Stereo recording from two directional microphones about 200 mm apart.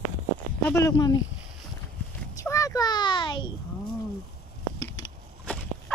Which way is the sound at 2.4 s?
15° left (ahead or behind).